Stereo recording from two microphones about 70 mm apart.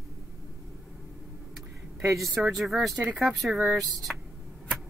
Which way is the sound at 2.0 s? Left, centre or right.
Centre.